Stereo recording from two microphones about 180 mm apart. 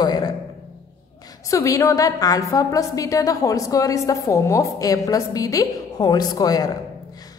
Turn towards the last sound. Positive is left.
turn(degrees=20)  # may be behind; listen again after turning